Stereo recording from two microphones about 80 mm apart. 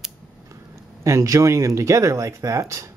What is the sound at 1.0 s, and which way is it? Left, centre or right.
Speech, right.